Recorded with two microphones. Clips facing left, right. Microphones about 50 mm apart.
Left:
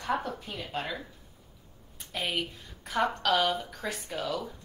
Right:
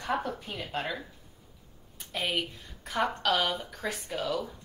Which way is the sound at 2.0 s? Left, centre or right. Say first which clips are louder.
Right 1 dB; centre.